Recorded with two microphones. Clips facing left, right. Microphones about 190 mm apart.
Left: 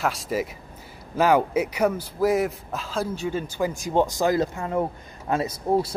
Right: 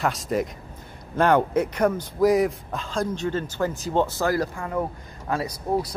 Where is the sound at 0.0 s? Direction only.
Centre (ahead or behind).